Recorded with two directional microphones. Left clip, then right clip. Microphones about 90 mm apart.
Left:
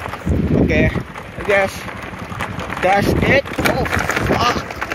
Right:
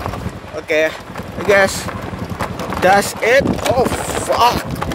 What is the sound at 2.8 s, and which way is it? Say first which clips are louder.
Speech: right 3 dB; 20° right (ahead or behind).